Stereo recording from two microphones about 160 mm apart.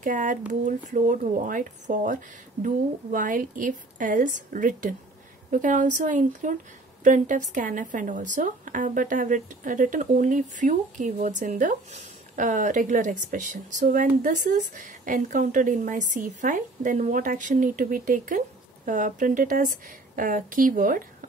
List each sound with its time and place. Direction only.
0.0 s a woman's voice: 55° right (ahead or behind)